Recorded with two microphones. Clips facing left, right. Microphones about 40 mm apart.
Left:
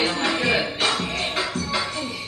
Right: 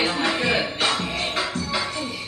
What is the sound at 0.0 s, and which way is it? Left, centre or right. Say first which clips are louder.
Music: even; centre.